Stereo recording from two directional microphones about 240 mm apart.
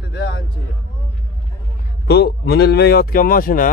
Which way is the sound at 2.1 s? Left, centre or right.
Left.